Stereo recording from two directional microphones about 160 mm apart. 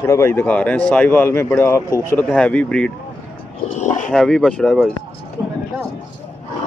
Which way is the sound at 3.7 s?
50° left (ahead or behind).